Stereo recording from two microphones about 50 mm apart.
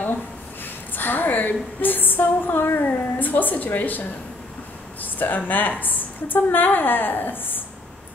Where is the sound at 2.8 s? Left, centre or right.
Left.